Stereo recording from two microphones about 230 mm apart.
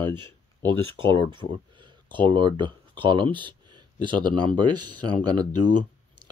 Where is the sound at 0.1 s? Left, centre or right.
Centre.